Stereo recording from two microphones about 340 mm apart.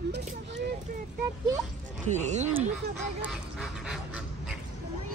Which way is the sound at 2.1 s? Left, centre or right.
Centre.